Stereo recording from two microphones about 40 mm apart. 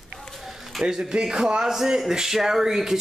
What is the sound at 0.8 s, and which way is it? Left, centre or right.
A man's voice, centre.